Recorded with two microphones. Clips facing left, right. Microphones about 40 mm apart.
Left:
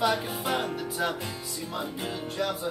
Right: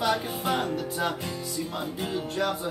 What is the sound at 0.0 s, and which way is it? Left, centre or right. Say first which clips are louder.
Music: even; centre.